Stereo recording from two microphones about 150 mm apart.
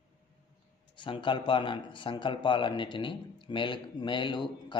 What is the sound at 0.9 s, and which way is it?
Speech, 30° left (ahead or behind).